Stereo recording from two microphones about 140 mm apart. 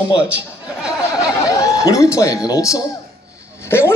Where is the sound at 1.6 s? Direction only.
25° left (ahead or behind).